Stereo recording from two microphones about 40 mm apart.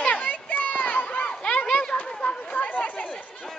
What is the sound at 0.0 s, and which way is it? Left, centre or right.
Children playing, left.